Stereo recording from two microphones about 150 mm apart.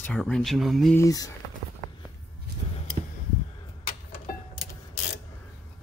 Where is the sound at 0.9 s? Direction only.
25° left (ahead or behind).